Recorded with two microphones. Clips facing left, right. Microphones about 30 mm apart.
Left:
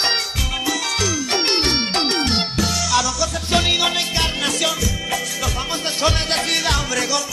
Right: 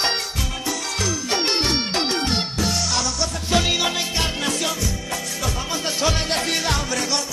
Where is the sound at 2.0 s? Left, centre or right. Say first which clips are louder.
Left 3 dB; left.